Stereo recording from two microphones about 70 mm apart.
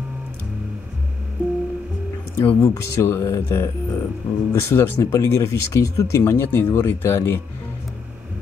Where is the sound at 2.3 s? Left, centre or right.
Left.